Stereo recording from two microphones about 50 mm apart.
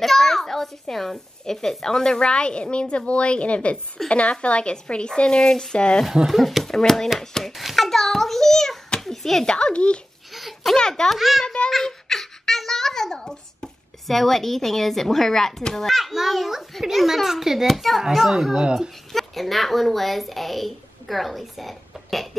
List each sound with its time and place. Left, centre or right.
0.0 s a child's voice: centre
6.2 s a child's voice: centre
7.5 s a sound: centre
10.3 s a sound: centre
10.8 s a child's voice: centre
11.1 s speech: centre
11.4 s speech: centre
11.7 s a child's voice: centre